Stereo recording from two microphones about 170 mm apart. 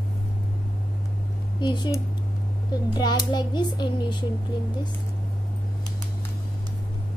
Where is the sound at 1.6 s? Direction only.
25° left (ahead or behind).